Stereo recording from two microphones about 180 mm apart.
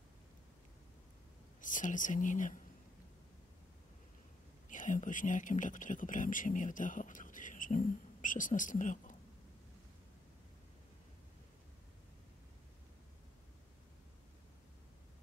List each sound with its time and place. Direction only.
1.6 s speech: 45° left (ahead or behind)
4.6 s speech: 45° left (ahead or behind)